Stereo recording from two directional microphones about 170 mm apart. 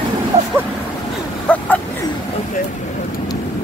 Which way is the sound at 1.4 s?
10° left (ahead or behind).